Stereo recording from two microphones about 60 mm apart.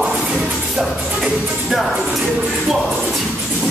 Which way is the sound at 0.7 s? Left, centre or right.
Centre.